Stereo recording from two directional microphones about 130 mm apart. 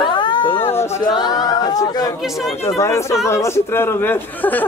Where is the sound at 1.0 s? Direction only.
35° left (ahead or behind).